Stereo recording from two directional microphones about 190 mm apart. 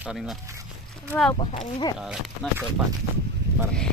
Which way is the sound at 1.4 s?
30° left (ahead or behind).